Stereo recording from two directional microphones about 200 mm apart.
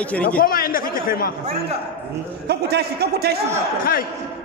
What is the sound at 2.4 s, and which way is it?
Speech, 55° right (ahead or behind).